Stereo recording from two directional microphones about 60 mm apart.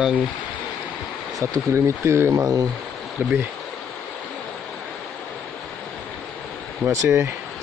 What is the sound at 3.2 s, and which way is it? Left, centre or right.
Speech, right.